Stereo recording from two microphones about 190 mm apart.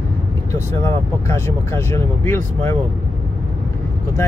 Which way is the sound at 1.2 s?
15° left (ahead or behind).